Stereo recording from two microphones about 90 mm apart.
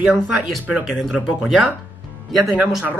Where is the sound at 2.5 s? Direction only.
15° right (ahead or behind).